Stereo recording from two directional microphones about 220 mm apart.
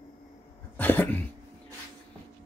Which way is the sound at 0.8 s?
10° left (ahead or behind).